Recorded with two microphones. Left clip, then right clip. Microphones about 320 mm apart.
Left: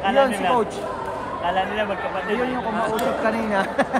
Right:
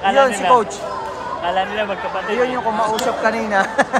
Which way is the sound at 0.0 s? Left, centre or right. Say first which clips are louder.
Right 4 dB; right.